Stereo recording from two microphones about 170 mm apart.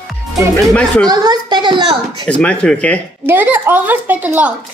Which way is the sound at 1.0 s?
25° right (ahead or behind).